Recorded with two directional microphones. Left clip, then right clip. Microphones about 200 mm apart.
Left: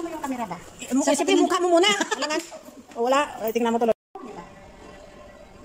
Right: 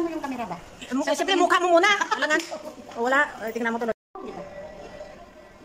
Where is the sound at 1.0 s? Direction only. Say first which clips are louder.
Left 1 dB; 10° left (ahead or behind).